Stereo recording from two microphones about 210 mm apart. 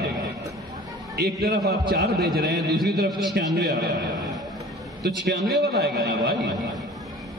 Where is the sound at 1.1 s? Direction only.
50° right (ahead or behind).